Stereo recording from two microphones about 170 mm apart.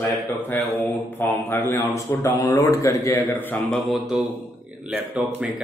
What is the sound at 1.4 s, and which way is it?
A man's voice, 10° left (ahead or behind).